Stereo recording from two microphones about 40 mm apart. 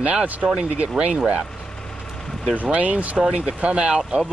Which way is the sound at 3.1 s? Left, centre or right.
Right.